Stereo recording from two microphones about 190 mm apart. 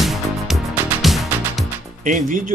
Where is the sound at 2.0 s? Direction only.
40° right (ahead or behind).